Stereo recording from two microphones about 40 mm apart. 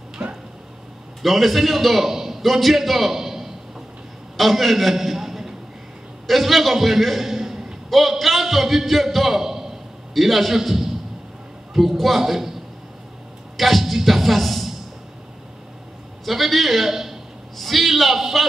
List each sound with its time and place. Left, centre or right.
0.2 s a sound: centre
1.2 s a man's voice: centre
3.2 s a sound: centre
4.4 s a man's voice: centre
7.9 s a man's voice: centre
12.0 s a man's voice: centre
13.6 s music: centre
16.3 s a man's voice: centre